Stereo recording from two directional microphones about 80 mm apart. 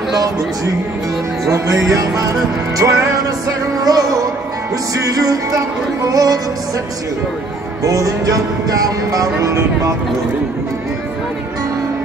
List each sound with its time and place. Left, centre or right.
1.5 s speech: right
7.8 s speech: right